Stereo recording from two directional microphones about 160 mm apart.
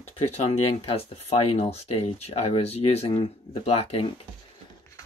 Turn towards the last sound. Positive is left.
turn(degrees=35)  # may be behind; listen again after turning